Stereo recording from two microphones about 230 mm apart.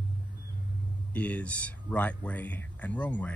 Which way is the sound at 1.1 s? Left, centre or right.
Centre.